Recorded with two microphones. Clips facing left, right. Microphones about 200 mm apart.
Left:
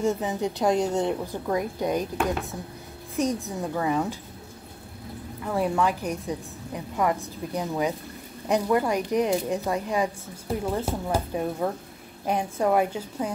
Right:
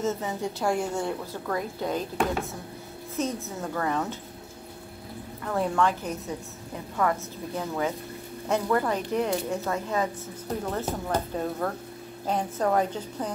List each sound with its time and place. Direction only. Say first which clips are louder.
0.0 s a woman's voice: left 3 dB; 15° left (ahead or behind)
3.2 s a woman's voice: left 4 dB; 15° left (ahead or behind)
5.4 s a woman's voice: left 1 dB; 10° left (ahead or behind)